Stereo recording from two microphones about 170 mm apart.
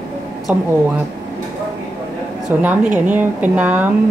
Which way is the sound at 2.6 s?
10° right (ahead or behind).